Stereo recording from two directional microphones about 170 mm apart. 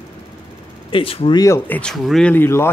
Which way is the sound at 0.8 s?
30° left (ahead or behind).